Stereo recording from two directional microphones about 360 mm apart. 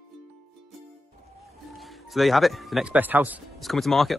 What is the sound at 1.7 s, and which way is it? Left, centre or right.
A man's voice, centre.